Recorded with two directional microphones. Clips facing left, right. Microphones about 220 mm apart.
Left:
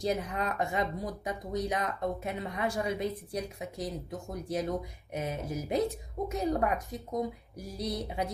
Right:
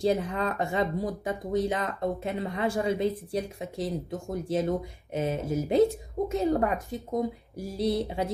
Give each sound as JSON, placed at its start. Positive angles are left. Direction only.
{"t": 0.0, "sound": "speech", "side_deg": -30}